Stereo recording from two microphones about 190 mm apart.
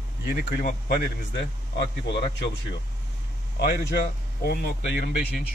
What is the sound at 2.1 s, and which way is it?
Speech, 65° left (ahead or behind).